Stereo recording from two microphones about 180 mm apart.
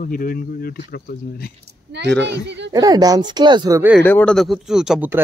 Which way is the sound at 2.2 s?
75° right (ahead or behind).